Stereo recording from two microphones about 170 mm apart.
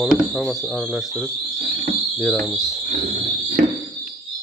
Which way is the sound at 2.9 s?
50° right (ahead or behind).